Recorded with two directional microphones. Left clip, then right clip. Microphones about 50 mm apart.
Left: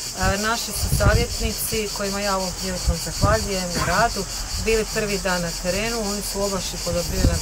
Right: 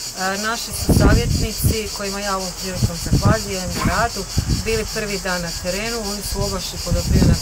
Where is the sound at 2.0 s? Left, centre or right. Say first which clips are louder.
Even; centre.